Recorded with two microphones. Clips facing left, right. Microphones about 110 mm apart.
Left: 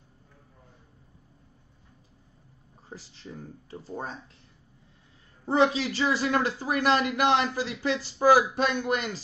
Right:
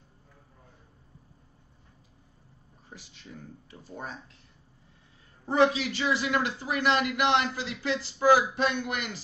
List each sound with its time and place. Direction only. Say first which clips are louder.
2.9 s speech: left 4 dB; 30° left (ahead or behind)
5.5 s speech: even; 30° left (ahead or behind)